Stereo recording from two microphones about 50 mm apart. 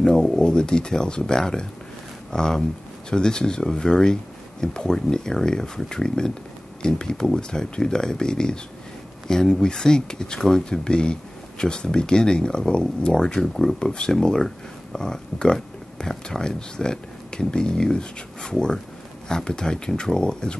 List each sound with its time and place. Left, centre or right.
0.0 s speech: centre